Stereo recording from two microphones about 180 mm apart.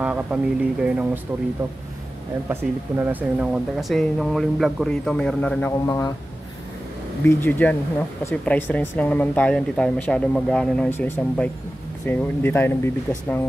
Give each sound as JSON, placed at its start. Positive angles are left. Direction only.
{"t": 0.0, "sound": "speech", "side_deg": -5}
{"t": 2.5, "sound": "speech", "side_deg": -10}
{"t": 5.7, "sound": "speech", "side_deg": 15}
{"t": 7.2, "sound": "speech", "side_deg": 10}